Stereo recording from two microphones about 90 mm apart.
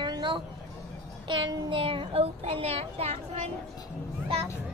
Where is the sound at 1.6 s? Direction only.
75° right (ahead or behind); by 3.0 s 90° right.